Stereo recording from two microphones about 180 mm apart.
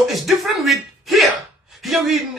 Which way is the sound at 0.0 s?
Centre (ahead or behind).